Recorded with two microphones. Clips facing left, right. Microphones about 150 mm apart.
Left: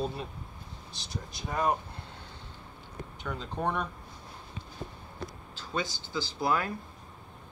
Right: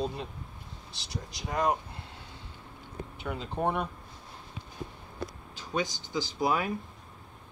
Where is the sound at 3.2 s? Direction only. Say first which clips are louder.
Right 2 dB; 5° right (ahead or behind).